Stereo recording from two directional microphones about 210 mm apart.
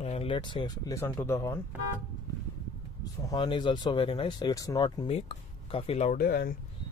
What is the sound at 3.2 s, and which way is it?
Speech, 20° left (ahead or behind).